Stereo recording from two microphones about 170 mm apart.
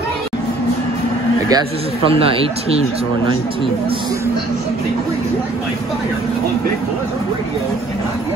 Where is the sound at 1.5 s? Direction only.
30° right (ahead or behind).